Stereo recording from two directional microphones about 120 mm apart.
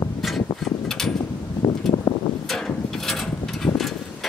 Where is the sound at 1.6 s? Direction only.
25° left (ahead or behind).